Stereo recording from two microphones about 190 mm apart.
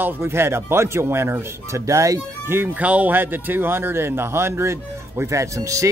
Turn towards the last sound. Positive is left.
turn(degrees=-15)  # may be behind; listen again after turning